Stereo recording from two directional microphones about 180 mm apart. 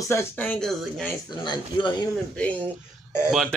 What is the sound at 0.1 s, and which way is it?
Speech, 10° left (ahead or behind).